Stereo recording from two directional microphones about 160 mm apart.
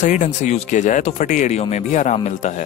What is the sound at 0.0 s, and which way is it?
Speech, 50° left (ahead or behind).